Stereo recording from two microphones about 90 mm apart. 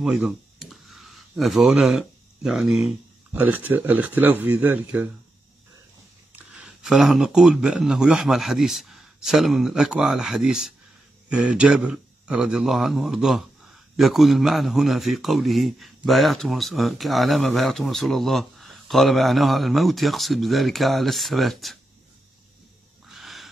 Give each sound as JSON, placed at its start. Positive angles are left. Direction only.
{"t": 0.0, "sound": "a sound", "side_deg": -5}
{"t": 3.3, "sound": "speech", "side_deg": -20}
{"t": 6.3, "sound": "a man's voice", "side_deg": -10}
{"t": 23.0, "sound": "wild animals", "side_deg": 0}